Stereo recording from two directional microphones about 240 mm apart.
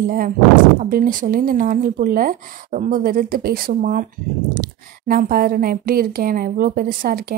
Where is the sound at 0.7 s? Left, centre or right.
Right.